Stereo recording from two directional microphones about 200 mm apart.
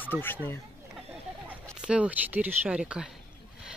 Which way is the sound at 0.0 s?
10° left (ahead or behind).